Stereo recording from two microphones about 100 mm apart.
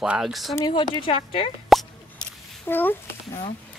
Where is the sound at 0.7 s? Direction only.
50° left (ahead or behind).